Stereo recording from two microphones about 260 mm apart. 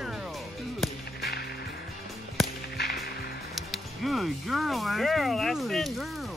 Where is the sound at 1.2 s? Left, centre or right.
Left.